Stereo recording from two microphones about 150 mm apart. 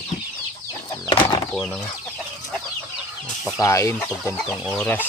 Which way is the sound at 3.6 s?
20° left (ahead or behind).